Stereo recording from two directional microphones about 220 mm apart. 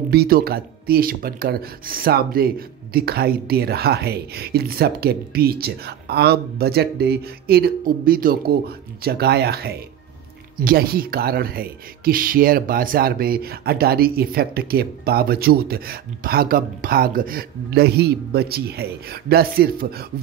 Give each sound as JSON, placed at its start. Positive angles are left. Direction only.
{"t": 0.1, "sound": "speech", "side_deg": -45}